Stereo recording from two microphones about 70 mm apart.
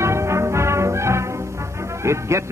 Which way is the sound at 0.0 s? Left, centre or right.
Right.